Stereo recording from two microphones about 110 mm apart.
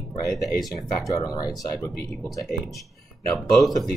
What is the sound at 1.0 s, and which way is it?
Speech, 35° left (ahead or behind).